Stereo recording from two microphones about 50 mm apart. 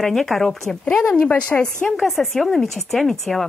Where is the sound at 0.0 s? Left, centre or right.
Centre.